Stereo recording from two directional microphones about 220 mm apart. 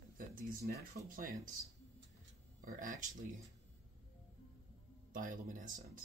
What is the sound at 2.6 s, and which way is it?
Speech, 35° right (ahead or behind).